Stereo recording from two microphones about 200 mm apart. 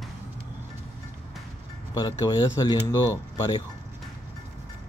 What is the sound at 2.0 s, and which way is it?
Speech, 20° left (ahead or behind).